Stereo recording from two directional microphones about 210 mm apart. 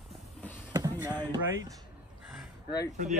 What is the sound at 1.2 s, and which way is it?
Speech, 20° right (ahead or behind).